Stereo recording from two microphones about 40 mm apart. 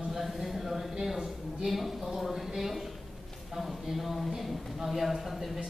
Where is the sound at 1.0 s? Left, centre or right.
Centre.